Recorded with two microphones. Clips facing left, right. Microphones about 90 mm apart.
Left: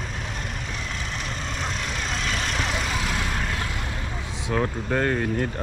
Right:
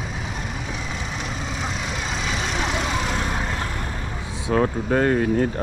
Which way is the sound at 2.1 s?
5° right (ahead or behind).